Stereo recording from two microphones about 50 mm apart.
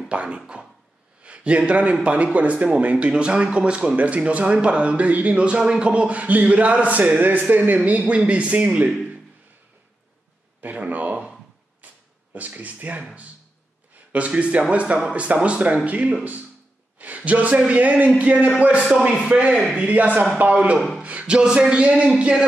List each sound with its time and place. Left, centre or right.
0.1 s speech: right
1.2 s a sound: right
1.7 s a man's voice: right
10.6 s a sound: right
12.4 s speech: right
14.1 s a man's voice: right
19.5 s a man's voice: centre
19.8 s a man's voice: right
21.0 s a sound: right